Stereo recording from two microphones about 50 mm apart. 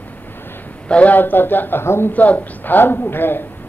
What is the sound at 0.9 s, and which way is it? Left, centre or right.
Speech, left.